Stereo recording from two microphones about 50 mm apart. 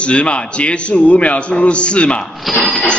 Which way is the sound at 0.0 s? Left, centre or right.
Left.